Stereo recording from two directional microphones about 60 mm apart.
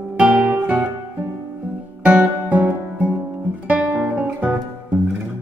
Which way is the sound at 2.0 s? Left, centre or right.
Right.